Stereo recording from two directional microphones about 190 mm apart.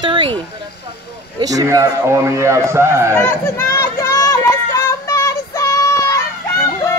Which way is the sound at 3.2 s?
15° left (ahead or behind).